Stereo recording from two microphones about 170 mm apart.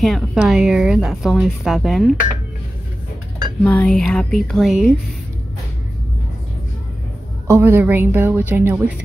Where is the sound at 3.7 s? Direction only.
5° left (ahead or behind).